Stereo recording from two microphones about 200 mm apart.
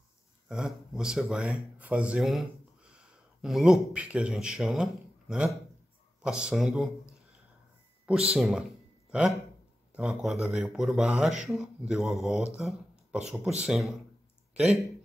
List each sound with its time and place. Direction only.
0.5 s speech: centre (ahead or behind)
8.1 s speech: 5° right (ahead or behind)
9.9 s speech: centre (ahead or behind)
12.5 s a sound: centre (ahead or behind)
13.3 s speech: 5° right (ahead or behind)
14.5 s a sound: 30° right (ahead or behind)